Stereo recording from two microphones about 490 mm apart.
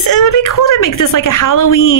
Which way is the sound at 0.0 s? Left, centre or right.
Left.